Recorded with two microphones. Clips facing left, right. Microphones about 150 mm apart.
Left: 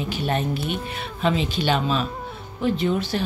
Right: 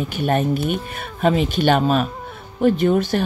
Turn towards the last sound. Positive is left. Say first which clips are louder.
# right 5 dB
turn(degrees=-50)  # may be behind; listen again after turning